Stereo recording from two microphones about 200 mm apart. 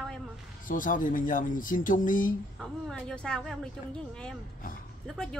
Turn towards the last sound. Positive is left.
turn(degrees=5)  # may be behind; listen again after turning